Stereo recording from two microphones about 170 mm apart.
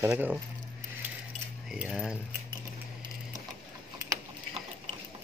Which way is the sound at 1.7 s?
5° right (ahead or behind).